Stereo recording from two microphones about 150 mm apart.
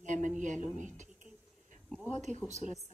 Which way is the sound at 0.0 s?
55° right (ahead or behind).